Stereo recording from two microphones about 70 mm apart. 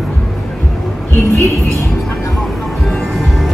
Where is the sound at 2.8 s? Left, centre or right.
Centre.